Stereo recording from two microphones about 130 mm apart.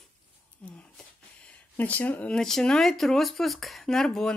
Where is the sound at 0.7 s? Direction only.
10° left (ahead or behind).